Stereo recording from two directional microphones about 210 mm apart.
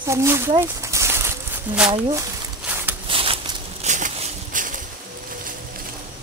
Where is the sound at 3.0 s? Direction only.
25° right (ahead or behind).